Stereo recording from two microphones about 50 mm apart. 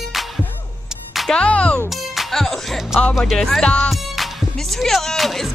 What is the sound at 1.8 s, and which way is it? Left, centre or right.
Music, centre.